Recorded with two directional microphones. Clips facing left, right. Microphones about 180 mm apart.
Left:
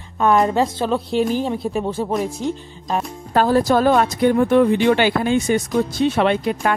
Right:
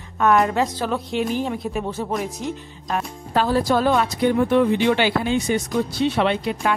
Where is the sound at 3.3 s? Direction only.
45° left (ahead or behind).